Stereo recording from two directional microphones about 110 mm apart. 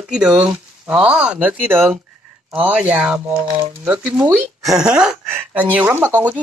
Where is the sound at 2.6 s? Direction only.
10° right (ahead or behind).